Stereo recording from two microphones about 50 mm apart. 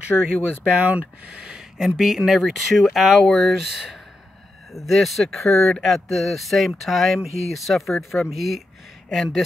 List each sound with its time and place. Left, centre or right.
0.2 s speech: centre